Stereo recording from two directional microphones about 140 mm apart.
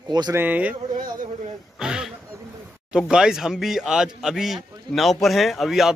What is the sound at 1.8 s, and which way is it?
A man's voice, 5° right (ahead or behind).